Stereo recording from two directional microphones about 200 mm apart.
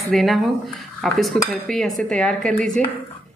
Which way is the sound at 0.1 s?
Centre (ahead or behind).